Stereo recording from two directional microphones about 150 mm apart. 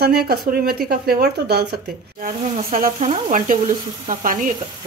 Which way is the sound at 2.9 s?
55° right (ahead or behind).